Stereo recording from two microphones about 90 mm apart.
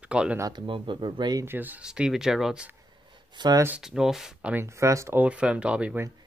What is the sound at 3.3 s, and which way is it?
Speech, 50° right (ahead or behind).